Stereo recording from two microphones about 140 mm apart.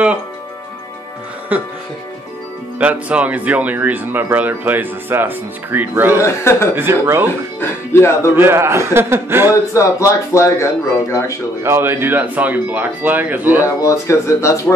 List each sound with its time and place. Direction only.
1.5 s speech: 10° right (ahead or behind)
2.8 s speech: 10° right (ahead or behind)
6.1 s speech: 20° left (ahead or behind)
6.7 s speech: 15° right (ahead or behind)
7.9 s speech: 15° left (ahead or behind)
8.4 s speech: 15° right (ahead or behind)
9.8 s speech: 20° left (ahead or behind)
11.6 s speech: 20° right (ahead or behind)
13.7 s speech: 20° left (ahead or behind)